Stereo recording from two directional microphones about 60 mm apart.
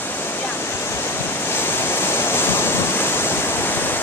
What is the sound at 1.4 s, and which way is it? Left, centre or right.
Waves, left.